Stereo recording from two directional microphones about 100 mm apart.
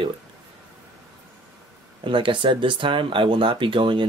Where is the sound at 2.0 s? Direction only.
55° right (ahead or behind).